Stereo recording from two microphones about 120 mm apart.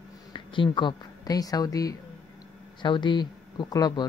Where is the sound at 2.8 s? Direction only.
40° left (ahead or behind).